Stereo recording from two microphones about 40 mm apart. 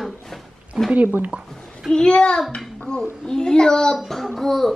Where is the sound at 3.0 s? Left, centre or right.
Centre.